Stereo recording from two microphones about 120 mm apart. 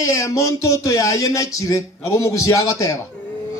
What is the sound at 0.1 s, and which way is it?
A man's voice, 25° left (ahead or behind).